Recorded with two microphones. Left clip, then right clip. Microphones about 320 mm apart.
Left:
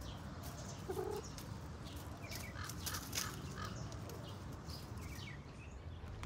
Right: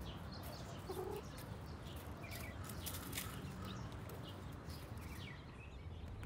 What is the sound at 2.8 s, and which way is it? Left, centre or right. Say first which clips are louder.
Crow: left 5 dB; left.